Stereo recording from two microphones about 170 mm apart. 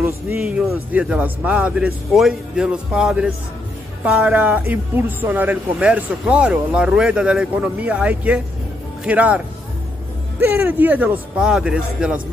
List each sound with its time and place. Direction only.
0.4 s a man's voice: 5° right (ahead or behind)
10.4 s speech: 10° right (ahead or behind)